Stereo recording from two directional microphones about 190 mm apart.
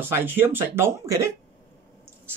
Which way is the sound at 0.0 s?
10° right (ahead or behind).